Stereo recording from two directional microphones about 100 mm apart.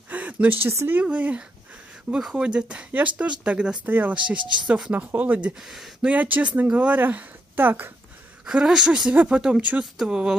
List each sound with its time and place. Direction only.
0.1 s a sound: 15° right (ahead or behind)
0.7 s speech: 30° right (ahead or behind)
0.9 s speech: 15° right (ahead or behind)
5.6 s speech: 5° right (ahead or behind)
6.1 s speech: 15° right (ahead or behind)
8.5 s speech: 5° right (ahead or behind)